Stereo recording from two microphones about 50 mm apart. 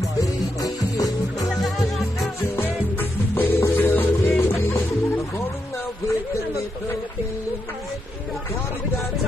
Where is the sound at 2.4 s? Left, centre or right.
Left.